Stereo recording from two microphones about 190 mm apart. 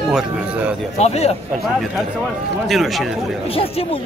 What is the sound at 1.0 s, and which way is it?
Speech, 35° left (ahead or behind).